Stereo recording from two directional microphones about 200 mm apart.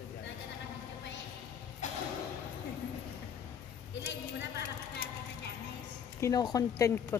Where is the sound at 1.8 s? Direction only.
35° left (ahead or behind).